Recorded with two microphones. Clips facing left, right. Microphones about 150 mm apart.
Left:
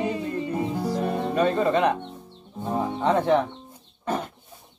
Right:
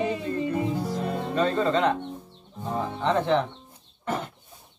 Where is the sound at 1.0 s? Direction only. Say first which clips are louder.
Left 3 dB; 15° left (ahead or behind).